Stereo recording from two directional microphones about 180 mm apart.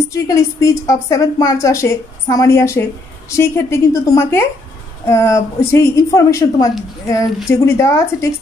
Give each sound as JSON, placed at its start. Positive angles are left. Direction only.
{"t": 0.1, "sound": "a woman's voice", "side_deg": 15}